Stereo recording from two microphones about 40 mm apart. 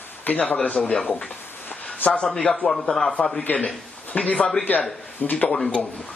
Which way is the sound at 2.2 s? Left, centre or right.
Centre.